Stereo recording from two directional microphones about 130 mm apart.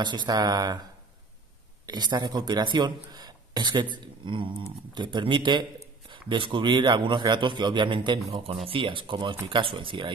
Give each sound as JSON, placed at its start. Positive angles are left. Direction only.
{"t": 0.0, "sound": "a man's voice", "side_deg": -35}
{"t": 1.9, "sound": "a man's voice", "side_deg": -35}